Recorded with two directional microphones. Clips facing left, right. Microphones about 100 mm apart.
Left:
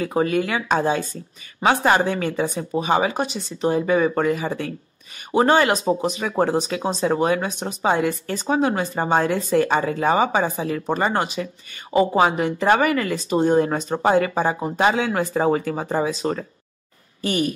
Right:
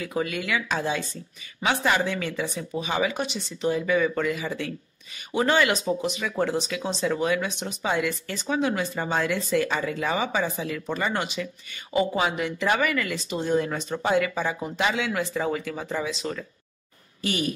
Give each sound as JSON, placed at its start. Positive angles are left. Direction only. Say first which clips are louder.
{"t": 0.0, "sound": "speech", "louder": "left 8 dB", "side_deg": 40}